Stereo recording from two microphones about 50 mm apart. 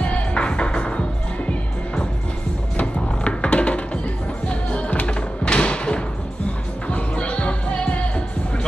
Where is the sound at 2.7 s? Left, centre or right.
Left.